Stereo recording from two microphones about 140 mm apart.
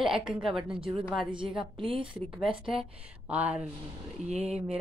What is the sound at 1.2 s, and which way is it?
A woman's voice, 40° right (ahead or behind).